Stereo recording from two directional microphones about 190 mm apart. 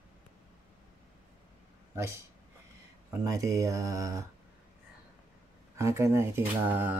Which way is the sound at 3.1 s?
15° right (ahead or behind).